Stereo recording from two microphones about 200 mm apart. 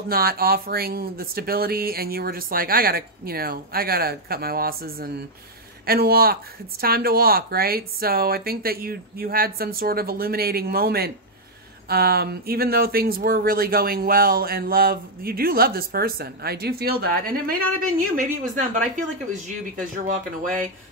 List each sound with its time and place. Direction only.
0.1 s speech: 50° right (ahead or behind)